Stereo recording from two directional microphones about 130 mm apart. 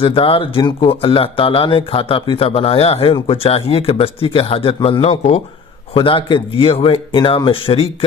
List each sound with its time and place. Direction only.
0.0 s speech: 45° left (ahead or behind)